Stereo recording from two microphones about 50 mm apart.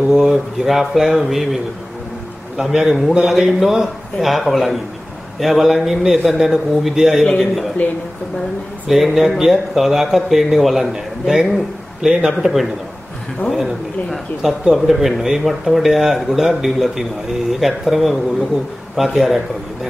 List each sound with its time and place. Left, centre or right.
0.1 s speech: centre
8.8 s speech: centre
14.7 s speech: centre